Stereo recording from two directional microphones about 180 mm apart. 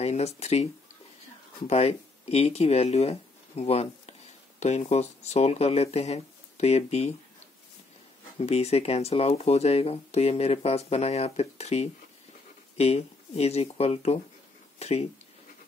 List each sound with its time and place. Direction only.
0.0 s speech: 35° left (ahead or behind)
1.7 s speech: 35° left (ahead or behind)
8.4 s speech: 35° left (ahead or behind)